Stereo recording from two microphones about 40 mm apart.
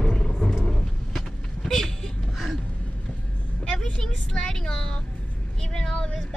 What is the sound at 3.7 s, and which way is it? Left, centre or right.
Vehicle, left.